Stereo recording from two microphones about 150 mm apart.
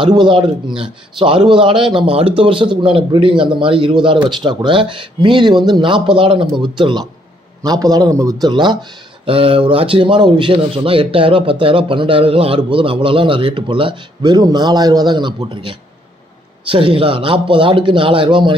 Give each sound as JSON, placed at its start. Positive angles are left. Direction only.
{"t": 0.0, "sound": "a man's voice", "side_deg": -30}